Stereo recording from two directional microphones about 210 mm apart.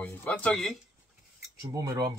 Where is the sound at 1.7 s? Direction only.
20° right (ahead or behind).